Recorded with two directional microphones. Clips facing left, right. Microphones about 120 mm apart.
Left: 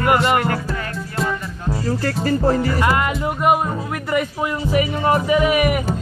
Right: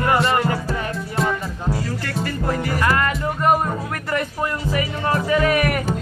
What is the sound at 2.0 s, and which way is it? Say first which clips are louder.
Speech: left 6 dB; 35° left (ahead or behind).